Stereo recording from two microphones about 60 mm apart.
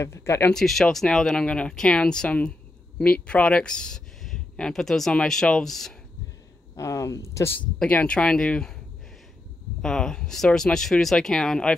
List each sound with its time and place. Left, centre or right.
0.0 s speech: left
0.5 s speech: centre
6.8 s speech: left
7.8 s speech: left
9.8 s speech: centre